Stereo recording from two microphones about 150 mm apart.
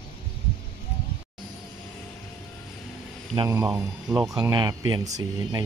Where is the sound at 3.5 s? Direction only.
20° right (ahead or behind).